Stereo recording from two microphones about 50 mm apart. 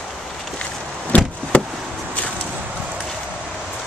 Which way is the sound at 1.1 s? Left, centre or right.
Left.